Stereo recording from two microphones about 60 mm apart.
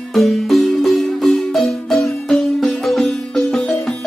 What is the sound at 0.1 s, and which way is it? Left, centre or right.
Marimba, centre.